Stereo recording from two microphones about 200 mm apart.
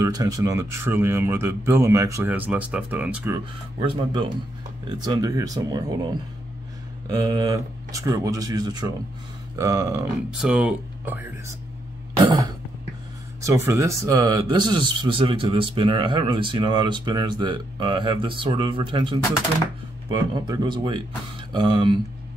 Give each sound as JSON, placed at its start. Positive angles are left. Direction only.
{"t": 0.0, "sound": "speech", "side_deg": -15}
{"t": 3.9, "sound": "speech", "side_deg": -25}
{"t": 7.1, "sound": "speech", "side_deg": -20}
{"t": 12.3, "sound": "cough", "side_deg": -20}
{"t": 13.4, "sound": "speech", "side_deg": -15}